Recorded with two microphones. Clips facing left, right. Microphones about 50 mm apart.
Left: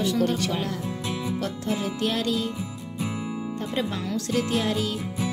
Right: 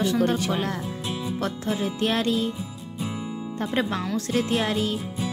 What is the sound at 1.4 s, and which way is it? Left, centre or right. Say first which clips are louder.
Speech: right 1 dB; right.